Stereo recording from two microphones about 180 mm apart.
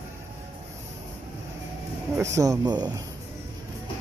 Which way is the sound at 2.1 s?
15° right (ahead or behind).